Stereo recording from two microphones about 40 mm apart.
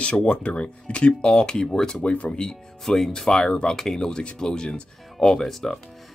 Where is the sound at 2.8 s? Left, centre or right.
Centre.